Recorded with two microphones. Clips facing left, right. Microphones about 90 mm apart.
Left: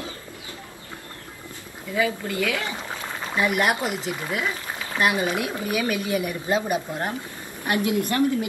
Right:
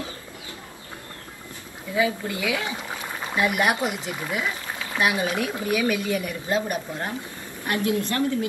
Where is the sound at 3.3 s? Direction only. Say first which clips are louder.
Even; centre (ahead or behind).